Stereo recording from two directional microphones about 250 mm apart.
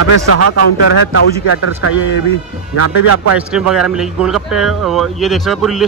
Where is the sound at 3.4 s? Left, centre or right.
Centre.